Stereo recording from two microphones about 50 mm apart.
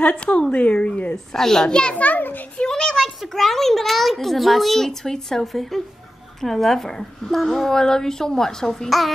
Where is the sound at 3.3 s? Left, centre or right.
Centre.